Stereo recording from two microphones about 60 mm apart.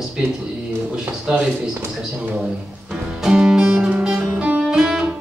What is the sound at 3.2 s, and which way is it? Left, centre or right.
Music, centre.